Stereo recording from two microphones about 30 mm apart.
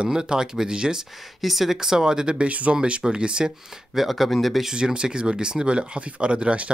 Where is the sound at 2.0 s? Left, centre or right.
Right.